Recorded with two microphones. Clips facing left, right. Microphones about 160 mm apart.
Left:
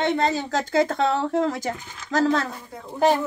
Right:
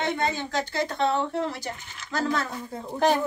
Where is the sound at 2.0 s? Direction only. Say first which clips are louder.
Left 6 dB; 35° left (ahead or behind).